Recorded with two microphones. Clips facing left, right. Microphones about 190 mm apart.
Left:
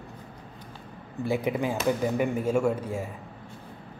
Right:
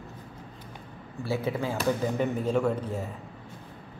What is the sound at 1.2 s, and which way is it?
A man's voice, 15° left (ahead or behind).